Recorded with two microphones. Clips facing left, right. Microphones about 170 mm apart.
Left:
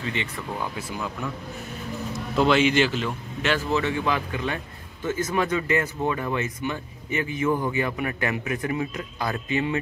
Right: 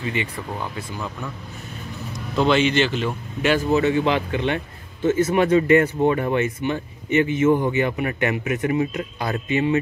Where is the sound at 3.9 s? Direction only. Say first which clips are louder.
Right 6 dB; 25° right (ahead or behind).